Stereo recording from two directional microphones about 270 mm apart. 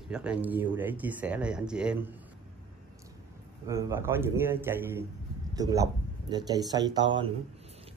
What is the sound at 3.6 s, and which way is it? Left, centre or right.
A man's voice, centre.